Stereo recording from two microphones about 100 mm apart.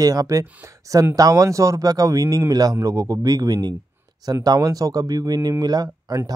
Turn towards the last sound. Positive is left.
turn(degrees=-40)  # may be behind; listen again after turning